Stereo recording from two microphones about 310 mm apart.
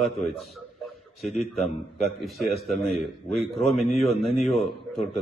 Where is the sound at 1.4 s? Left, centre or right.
Centre.